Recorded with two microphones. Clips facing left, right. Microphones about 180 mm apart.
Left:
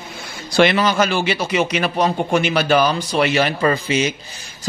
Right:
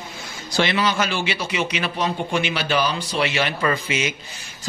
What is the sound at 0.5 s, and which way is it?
A man's voice, 50° left (ahead or behind).